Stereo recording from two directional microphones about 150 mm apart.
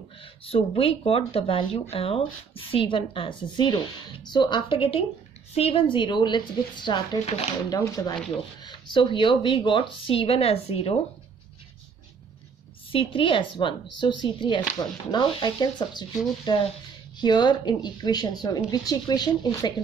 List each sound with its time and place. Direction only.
0.2 s speech: 40° left (ahead or behind)
12.9 s speech: 35° left (ahead or behind)